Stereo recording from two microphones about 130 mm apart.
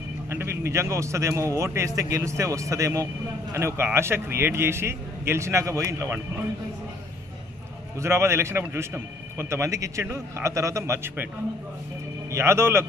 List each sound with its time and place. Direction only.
0.3 s a man's voice: 20° right (ahead or behind)
8.0 s a man's voice: 20° right (ahead or behind)
12.3 s a man's voice: 20° right (ahead or behind)